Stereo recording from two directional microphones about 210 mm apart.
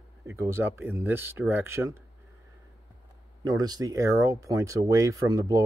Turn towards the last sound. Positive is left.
turn(degrees=-15)  # may be behind; listen again after turning